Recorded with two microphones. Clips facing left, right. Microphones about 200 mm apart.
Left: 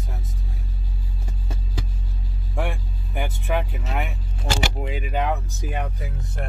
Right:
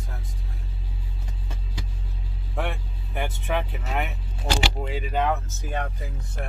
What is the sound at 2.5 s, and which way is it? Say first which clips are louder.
Speech: left 2 dB; 10° left (ahead or behind).